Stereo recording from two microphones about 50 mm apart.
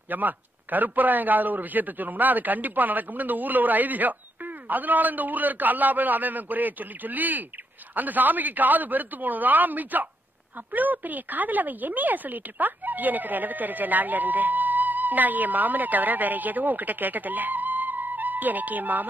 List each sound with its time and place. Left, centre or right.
0.1 s speech: right